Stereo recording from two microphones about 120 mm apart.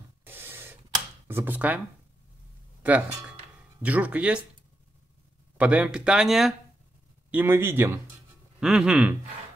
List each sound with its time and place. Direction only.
0.2 s a sound: 20° right (ahead or behind)
1.2 s speech: 20° right (ahead or behind)
2.8 s a man's voice: 10° right (ahead or behind)
5.6 s speech: 10° right (ahead or behind)
7.2 s a man's voice: 15° right (ahead or behind)
8.5 s a man's voice: 5° right (ahead or behind)